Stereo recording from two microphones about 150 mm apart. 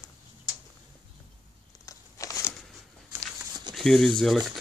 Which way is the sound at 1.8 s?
20° left (ahead or behind).